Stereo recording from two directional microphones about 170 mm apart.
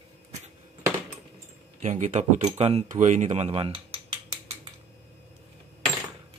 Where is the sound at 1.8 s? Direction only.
45° right (ahead or behind).